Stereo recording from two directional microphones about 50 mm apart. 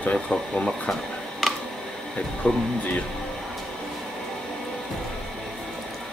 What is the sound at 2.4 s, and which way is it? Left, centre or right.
Speech, left.